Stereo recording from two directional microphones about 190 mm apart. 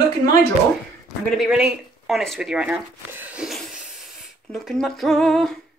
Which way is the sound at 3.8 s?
Centre (ahead or behind).